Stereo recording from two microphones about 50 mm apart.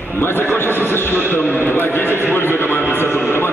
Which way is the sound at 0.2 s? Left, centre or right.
Left.